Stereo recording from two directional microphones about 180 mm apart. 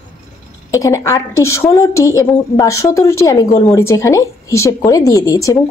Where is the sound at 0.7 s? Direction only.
20° left (ahead or behind).